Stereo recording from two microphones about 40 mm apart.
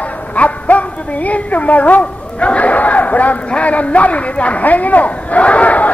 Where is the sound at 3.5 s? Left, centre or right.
Left.